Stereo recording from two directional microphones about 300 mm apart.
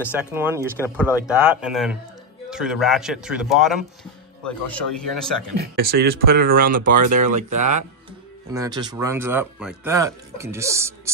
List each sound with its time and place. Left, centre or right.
0.1 s a man's voice: centre
5.6 s speech: right
7.3 s speech: right
8.5 s speech: centre